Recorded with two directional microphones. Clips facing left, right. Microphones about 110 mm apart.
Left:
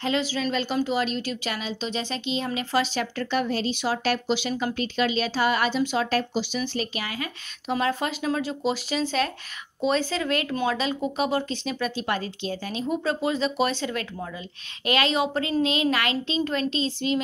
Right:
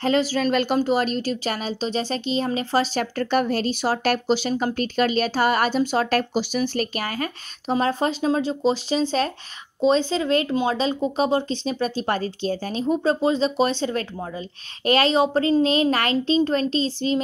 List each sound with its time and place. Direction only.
0.0 s speech: 40° right (ahead or behind)
0.7 s speech: 45° right (ahead or behind)
7.7 s speech: 35° right (ahead or behind)